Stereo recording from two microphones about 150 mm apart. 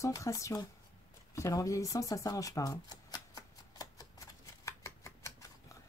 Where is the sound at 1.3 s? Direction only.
20° left (ahead or behind).